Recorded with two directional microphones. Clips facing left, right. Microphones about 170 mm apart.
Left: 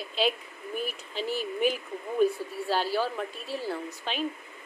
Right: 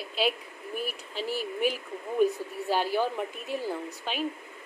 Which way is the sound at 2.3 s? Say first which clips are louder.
Even; 15° right (ahead or behind).